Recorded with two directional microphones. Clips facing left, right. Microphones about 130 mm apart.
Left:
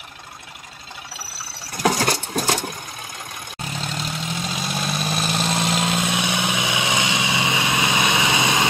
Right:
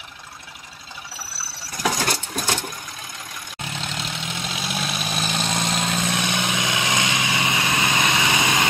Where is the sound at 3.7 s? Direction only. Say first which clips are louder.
Left 2 dB; 40° left (ahead or behind).